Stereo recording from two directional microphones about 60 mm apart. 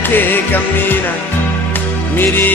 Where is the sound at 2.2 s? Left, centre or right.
Left.